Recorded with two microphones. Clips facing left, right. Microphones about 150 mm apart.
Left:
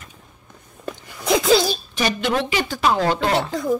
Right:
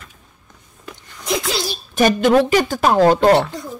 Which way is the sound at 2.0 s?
45° right (ahead or behind).